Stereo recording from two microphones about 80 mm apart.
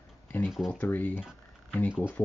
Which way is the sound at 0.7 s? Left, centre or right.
Left.